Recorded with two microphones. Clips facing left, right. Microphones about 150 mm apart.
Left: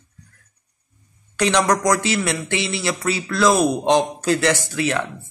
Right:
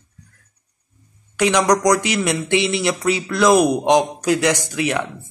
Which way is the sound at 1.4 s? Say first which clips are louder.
Right 2 dB; 10° right (ahead or behind).